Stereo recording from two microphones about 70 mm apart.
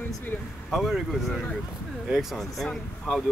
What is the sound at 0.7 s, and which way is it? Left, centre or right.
Speech, centre.